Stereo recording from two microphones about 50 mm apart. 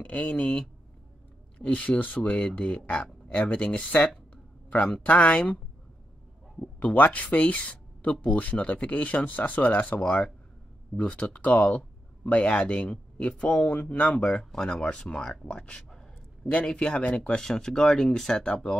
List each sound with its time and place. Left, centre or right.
0.0 s speech: left
6.6 s speech: left
14.5 s speech: centre
14.8 s speech: left
17.2 s speech: centre